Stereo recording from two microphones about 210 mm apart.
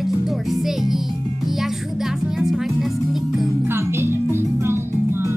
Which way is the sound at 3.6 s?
10° right (ahead or behind).